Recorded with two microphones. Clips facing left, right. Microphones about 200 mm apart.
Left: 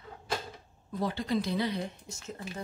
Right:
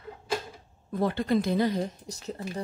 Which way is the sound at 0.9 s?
55° right (ahead or behind).